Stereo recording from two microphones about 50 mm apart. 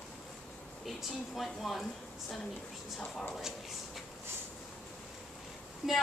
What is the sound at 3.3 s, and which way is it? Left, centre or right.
Speech, centre.